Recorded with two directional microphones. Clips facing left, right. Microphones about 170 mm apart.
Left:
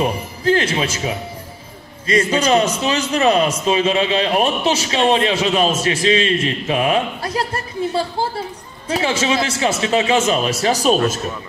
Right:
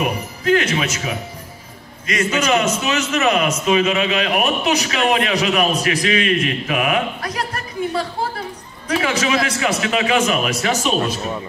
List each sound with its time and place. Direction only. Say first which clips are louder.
0.0 s a man's voice: left 2 dB; 30° left (ahead or behind)